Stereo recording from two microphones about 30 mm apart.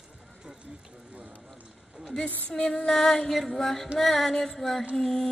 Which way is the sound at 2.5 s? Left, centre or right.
Left.